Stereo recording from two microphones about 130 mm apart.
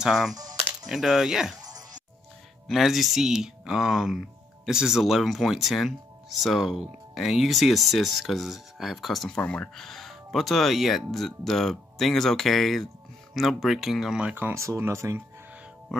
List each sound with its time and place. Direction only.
0.0 s speech: centre (ahead or behind)
0.4 s music: 30° right (ahead or behind)
0.8 s speech: centre (ahead or behind)
1.6 s music: 30° right (ahead or behind)
2.7 s speech: centre (ahead or behind); by 15.2 s 20° right (ahead or behind)